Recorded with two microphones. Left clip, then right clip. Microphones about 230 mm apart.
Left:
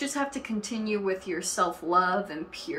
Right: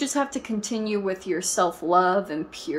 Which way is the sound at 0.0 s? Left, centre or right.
Right.